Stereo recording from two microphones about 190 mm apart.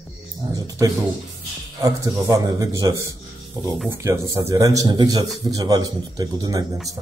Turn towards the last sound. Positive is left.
turn(degrees=-20)  # may be behind; listen again after turning